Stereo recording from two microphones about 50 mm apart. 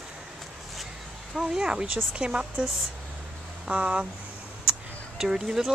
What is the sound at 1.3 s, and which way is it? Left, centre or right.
Speech, centre.